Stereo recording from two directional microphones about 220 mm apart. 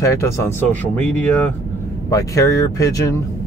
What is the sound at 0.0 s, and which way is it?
Speech, 15° left (ahead or behind).